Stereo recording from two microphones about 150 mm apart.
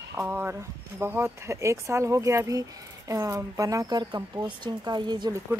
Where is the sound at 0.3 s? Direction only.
15° right (ahead or behind).